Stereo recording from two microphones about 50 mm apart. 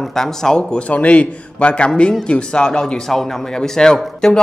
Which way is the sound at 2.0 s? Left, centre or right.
Centre.